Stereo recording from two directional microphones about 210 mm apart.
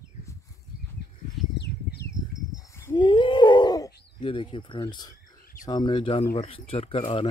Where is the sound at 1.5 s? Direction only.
50° left (ahead or behind).